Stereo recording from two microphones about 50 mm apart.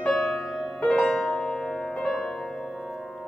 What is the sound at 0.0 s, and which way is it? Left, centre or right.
Music, centre.